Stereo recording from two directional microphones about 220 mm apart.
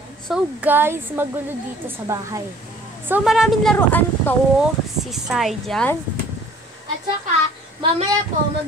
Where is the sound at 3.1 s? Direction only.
Centre (ahead or behind).